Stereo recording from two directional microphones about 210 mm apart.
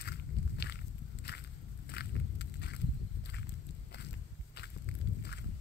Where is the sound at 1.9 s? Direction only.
55° left (ahead or behind).